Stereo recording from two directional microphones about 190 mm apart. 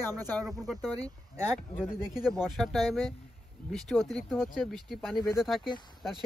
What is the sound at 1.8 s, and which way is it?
Speech, 5° right (ahead or behind).